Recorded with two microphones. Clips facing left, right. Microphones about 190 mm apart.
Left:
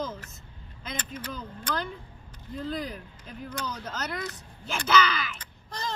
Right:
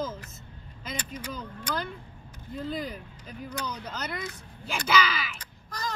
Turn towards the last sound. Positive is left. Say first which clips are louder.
# even
turn(degrees=25)  # may be behind; listen again after turning